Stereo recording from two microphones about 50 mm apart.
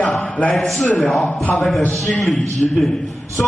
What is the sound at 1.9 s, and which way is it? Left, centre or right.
Speech, centre.